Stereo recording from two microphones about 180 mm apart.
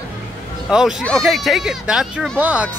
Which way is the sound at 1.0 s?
5° left (ahead or behind).